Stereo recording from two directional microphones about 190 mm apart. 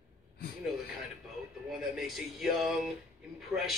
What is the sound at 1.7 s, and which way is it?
Speech, centre (ahead or behind).